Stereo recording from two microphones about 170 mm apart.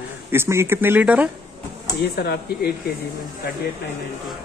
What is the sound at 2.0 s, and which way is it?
Speech, 70° left (ahead or behind).